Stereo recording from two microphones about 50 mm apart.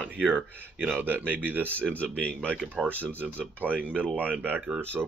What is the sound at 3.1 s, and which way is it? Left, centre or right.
Speech, right.